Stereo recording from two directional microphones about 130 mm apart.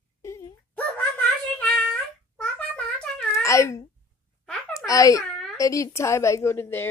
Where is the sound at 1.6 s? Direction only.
5° left (ahead or behind).